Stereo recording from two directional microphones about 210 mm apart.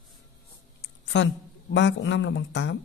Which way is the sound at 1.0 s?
55° left (ahead or behind).